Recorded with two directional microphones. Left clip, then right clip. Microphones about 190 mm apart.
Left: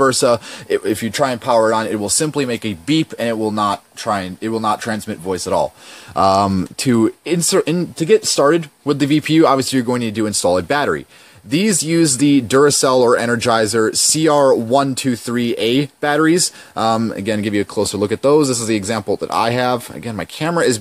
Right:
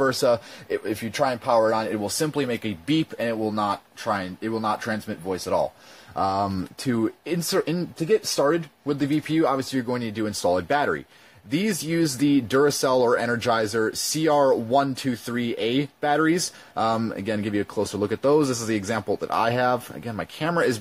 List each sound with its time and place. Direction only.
0.0 s speech: 35° left (ahead or behind)